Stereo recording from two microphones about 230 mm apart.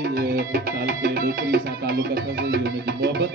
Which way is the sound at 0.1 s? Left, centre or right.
Right.